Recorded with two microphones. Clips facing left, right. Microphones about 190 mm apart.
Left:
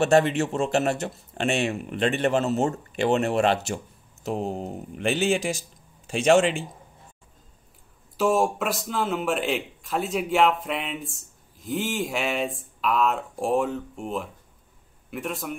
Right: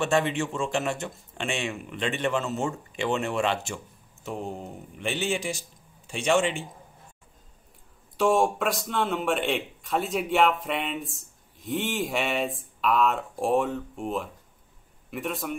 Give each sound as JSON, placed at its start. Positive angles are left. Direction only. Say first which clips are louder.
{"t": 0.0, "sound": "speech", "louder": "left 5 dB", "side_deg": 40}
{"t": 6.0, "sound": "speech", "louder": "left 6 dB", "side_deg": 90}
{"t": 8.2, "sound": "a man's voice", "louder": "even", "side_deg": 0}